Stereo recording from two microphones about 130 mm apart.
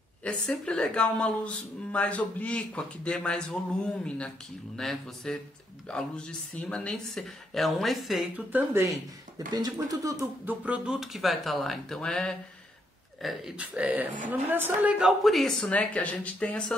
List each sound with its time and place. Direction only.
0.2 s speech: 5° left (ahead or behind)
8.5 s speech: 15° right (ahead or behind)
9.5 s speech: 30° right (ahead or behind)
10.4 s speech: 10° right (ahead or behind); by 16.7 s 10° left (ahead or behind)